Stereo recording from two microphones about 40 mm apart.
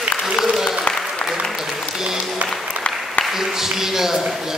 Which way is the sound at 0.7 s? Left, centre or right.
Centre.